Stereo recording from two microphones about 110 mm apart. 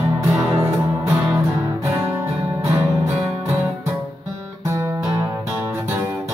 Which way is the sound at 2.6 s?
25° right (ahead or behind).